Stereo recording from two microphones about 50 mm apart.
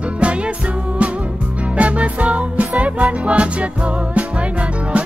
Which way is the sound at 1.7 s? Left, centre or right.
Right.